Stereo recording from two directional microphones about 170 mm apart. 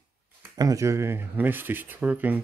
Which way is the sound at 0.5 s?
20° right (ahead or behind).